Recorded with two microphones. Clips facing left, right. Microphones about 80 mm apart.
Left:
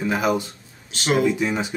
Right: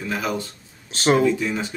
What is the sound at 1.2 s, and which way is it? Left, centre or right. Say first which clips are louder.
Speech: even; centre.